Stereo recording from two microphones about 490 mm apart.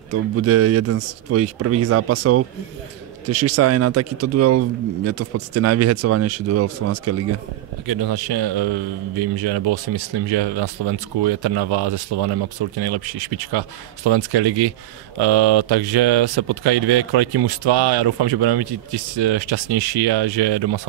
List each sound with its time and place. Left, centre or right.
0.1 s speech: right
7.8 s a man's voice: right